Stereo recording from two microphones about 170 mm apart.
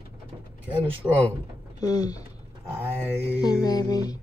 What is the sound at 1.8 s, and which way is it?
Music, 20° left (ahead or behind).